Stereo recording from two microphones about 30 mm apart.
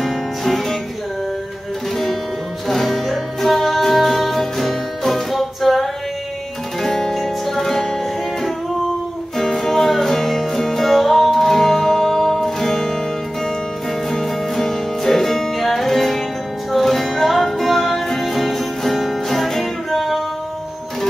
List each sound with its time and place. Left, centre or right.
0.0 s music: centre
2.7 s music: centre
6.8 s music: centre
7.4 s music: centre
9.4 s music: centre
14.1 s music: centre
19.9 s music: centre